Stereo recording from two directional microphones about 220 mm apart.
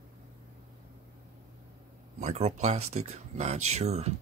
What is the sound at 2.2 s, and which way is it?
Speech, 30° right (ahead or behind).